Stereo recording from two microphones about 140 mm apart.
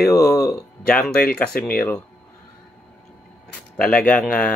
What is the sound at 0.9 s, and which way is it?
Speech, 5° left (ahead or behind).